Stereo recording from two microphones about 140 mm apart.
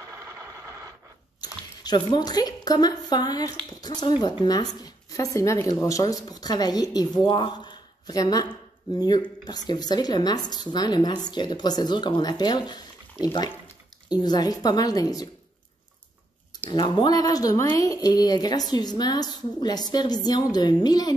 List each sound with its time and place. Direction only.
0.0 s a sound: 20° right (ahead or behind)
1.4 s speech: 30° left (ahead or behind)
16.7 s speech: 30° left (ahead or behind)